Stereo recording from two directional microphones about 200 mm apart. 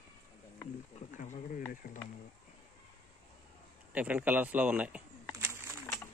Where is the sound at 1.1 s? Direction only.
40° left (ahead or behind).